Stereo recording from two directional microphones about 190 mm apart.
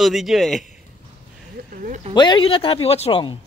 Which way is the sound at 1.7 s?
45° right (ahead or behind).